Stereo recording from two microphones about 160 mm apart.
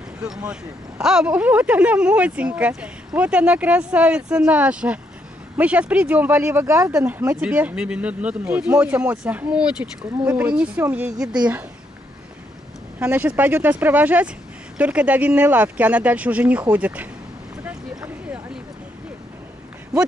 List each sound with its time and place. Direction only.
1.0 s speech: 5° right (ahead or behind)
13.0 s speech: 10° right (ahead or behind)
17.6 s a sound: 10° right (ahead or behind)